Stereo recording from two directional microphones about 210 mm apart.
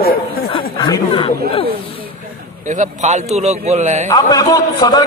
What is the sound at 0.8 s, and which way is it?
Speech, 25° left (ahead or behind).